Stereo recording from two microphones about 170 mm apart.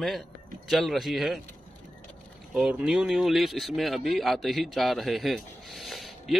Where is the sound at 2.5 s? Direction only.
5° right (ahead or behind).